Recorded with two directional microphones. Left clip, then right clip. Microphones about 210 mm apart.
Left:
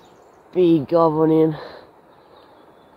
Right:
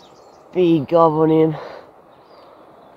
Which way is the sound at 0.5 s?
Centre (ahead or behind).